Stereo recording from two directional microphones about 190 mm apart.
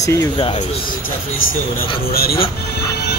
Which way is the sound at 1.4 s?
90° left.